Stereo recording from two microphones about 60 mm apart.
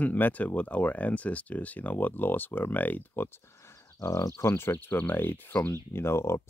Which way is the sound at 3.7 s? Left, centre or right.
Left.